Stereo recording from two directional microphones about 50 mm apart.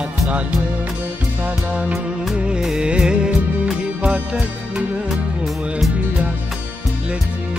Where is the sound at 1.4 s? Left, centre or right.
Right.